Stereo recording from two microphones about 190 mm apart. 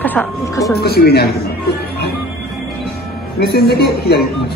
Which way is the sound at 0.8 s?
55° left (ahead or behind).